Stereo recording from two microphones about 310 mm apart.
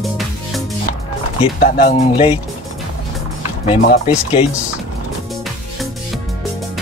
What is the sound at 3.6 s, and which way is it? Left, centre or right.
Speech, centre.